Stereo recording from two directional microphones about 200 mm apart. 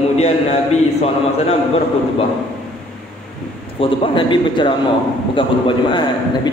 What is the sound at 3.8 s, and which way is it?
A man's voice, 25° left (ahead or behind).